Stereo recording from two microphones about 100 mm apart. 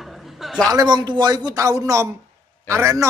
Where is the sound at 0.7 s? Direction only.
45° right (ahead or behind); by 3.0 s 30° right (ahead or behind).